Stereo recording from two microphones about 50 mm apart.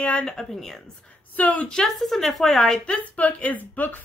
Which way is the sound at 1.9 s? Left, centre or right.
Centre.